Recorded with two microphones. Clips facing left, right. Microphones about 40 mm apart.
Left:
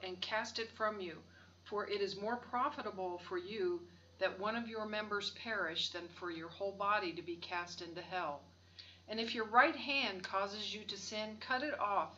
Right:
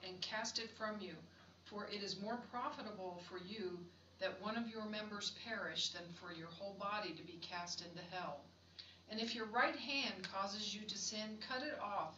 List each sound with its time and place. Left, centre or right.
0.0 s speech: left